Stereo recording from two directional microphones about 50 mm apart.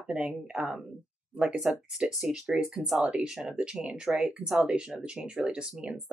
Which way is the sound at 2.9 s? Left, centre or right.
Right.